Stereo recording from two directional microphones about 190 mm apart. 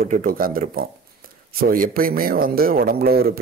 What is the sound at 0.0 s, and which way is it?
A man's voice, 50° right (ahead or behind).